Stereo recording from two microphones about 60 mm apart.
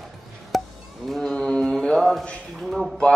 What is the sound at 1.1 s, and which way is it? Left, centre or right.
Mantra, centre.